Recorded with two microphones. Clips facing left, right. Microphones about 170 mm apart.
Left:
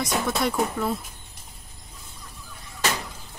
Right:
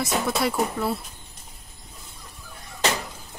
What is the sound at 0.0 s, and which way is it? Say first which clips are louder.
Speech: right 1 dB; 5° right (ahead or behind).